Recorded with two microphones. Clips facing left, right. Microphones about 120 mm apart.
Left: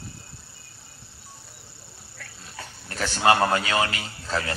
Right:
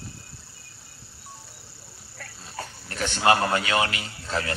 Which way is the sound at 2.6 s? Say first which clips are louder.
Right 5 dB; 35° right (ahead or behind).